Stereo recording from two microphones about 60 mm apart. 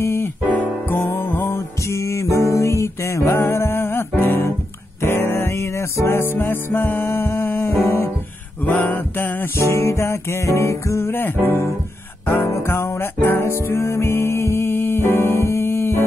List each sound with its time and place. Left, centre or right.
0.0 s keyboard: left
0.8 s music: left
3.3 s music: left
8.7 s music: left